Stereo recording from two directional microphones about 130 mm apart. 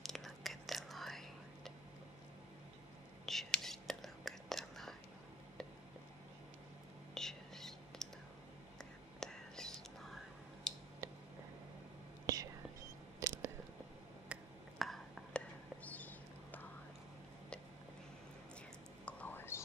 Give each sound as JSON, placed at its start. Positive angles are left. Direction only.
{"t": 0.0, "sound": "whispering", "side_deg": 0}
{"t": 3.3, "sound": "whispering", "side_deg": 0}
{"t": 7.2, "sound": "whispering", "side_deg": 5}
{"t": 9.2, "sound": "whispering", "side_deg": 5}
{"t": 12.3, "sound": "whispering", "side_deg": -25}
{"t": 14.3, "sound": "whispering", "side_deg": 0}
{"t": 19.0, "sound": "whispering", "side_deg": 10}